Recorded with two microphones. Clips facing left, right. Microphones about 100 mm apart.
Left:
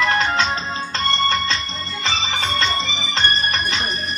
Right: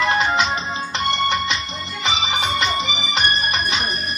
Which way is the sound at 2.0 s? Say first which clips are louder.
Right 2 dB; 15° right (ahead or behind).